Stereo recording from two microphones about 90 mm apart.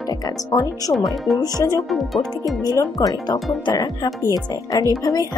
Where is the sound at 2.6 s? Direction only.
45° left (ahead or behind).